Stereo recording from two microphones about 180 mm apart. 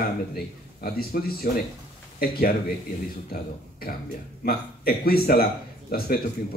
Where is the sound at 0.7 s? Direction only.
55° left (ahead or behind).